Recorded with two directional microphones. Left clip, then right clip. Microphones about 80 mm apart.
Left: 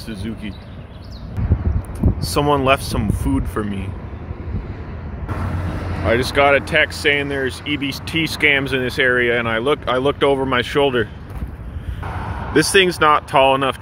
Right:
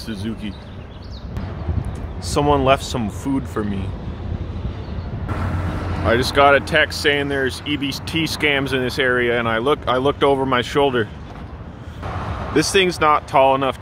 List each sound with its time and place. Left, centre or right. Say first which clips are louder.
0.0 s speech: right 1 dB; right
2.1 s speech: even; centre
5.5 s vehicle: right 1 dB; left
6.0 s speech: right 1 dB; right
7.9 s speech: left 1 dB; centre
12.5 s speech: left 3 dB; centre